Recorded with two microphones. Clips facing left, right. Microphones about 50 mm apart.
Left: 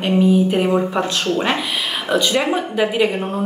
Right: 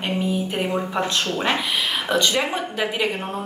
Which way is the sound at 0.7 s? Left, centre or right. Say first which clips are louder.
Left 5 dB; centre.